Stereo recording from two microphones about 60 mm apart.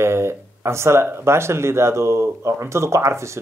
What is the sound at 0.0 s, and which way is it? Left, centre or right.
Speech, right.